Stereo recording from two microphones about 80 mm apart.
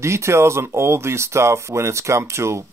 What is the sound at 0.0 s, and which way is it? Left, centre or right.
Speech, right.